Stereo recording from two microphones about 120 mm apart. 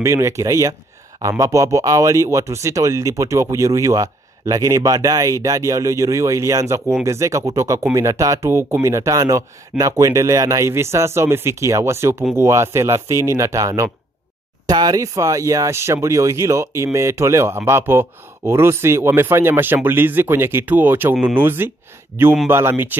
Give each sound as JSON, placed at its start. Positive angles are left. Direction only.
{"t": 0.0, "sound": "speech", "side_deg": -25}